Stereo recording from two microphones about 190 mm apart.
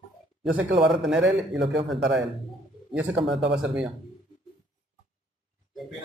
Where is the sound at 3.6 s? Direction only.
5° right (ahead or behind).